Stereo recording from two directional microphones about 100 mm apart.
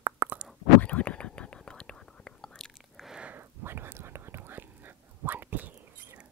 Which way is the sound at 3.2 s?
20° right (ahead or behind).